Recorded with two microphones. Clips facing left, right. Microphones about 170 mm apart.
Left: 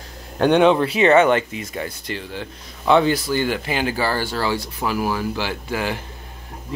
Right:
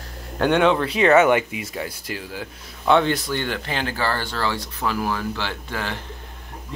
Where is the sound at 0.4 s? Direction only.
15° left (ahead or behind).